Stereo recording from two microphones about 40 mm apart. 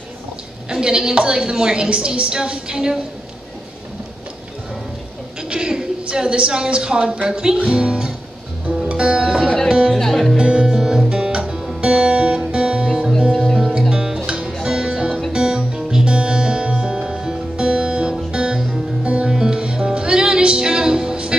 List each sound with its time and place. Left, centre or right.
0.7 s a woman's voice: centre
5.5 s a woman's voice: centre
8.6 s music: right
9.9 s music: centre
10.3 s music: right